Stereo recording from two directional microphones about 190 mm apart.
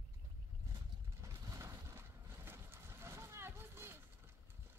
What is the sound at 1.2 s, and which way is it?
Boat, 15° right (ahead or behind).